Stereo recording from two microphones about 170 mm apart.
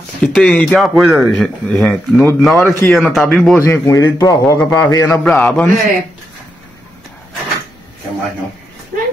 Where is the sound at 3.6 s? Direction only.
20° left (ahead or behind).